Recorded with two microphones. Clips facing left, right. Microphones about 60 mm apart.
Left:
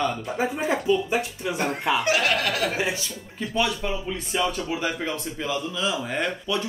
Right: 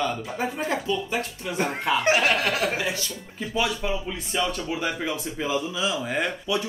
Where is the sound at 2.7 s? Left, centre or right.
Left.